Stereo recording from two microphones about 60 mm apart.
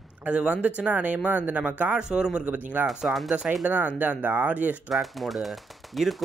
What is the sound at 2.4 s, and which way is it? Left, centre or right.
Speech, right.